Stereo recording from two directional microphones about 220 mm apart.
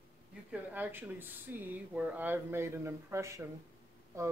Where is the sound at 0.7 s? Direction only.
10° right (ahead or behind).